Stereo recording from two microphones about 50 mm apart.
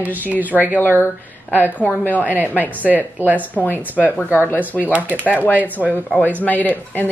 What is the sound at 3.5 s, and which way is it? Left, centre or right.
Speech, left.